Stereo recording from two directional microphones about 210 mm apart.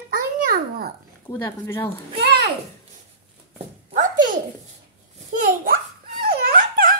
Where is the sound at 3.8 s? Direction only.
40° right (ahead or behind).